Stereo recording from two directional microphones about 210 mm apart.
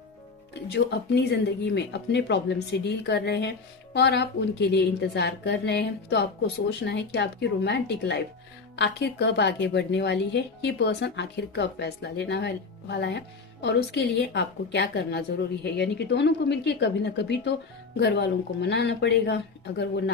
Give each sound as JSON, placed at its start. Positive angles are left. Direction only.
{"t": 0.7, "sound": "a woman's voice", "side_deg": 55}